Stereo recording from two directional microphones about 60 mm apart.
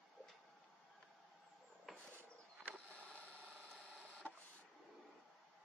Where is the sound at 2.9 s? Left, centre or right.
Centre.